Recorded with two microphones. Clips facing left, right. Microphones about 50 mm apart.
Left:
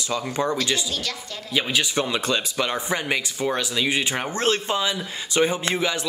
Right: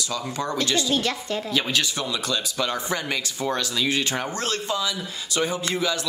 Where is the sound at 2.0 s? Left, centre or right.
Left.